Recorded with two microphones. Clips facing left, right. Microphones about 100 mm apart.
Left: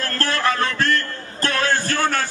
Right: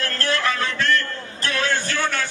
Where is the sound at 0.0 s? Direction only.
40° left (ahead or behind).